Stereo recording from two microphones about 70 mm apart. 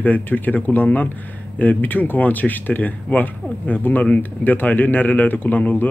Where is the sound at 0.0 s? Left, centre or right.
Left.